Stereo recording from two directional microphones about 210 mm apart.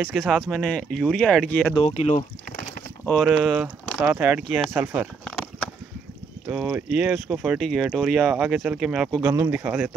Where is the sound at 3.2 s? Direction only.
5° right (ahead or behind).